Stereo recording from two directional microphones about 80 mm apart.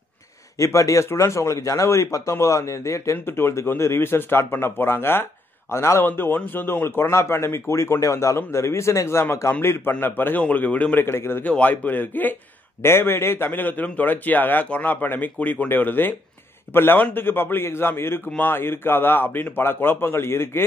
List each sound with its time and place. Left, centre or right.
0.6 s speech: left; by 11.1 s centre
11.1 s a man's voice: left
11.4 s a man's voice: centre